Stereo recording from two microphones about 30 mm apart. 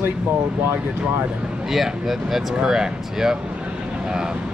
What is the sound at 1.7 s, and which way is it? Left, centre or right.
Speech, centre.